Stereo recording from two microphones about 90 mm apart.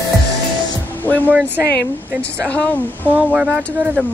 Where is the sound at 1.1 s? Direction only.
15° left (ahead or behind).